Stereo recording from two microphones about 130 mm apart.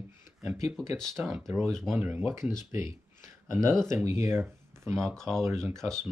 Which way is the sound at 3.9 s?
20° right (ahead or behind).